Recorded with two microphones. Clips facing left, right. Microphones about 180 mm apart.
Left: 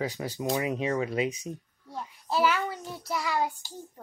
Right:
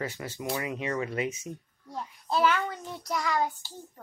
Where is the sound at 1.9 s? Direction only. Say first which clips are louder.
Even; 5° left (ahead or behind).